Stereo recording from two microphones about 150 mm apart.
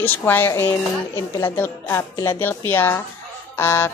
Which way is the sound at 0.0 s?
15° left (ahead or behind).